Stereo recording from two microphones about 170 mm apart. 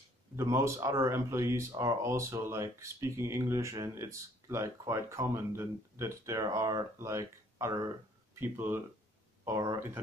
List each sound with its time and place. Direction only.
0.4 s speech: 15° right (ahead or behind)